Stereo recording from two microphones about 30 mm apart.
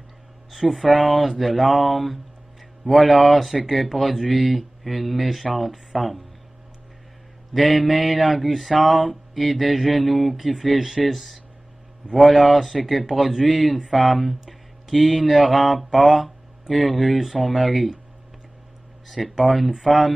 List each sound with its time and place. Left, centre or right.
0.5 s mantra: centre
7.5 s mantra: centre
14.4 s a sound: centre
19.2 s mantra: centre